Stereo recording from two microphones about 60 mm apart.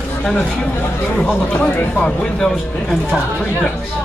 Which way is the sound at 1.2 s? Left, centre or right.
Left.